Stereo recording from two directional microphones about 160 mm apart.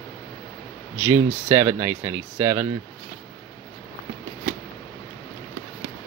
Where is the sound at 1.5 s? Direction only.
15° right (ahead or behind).